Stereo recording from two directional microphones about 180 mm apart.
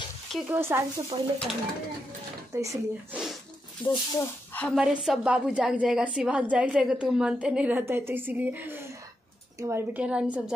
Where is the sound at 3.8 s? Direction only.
10° left (ahead or behind).